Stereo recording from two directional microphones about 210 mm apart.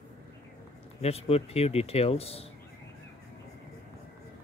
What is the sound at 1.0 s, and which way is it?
Speech, 30° left (ahead or behind).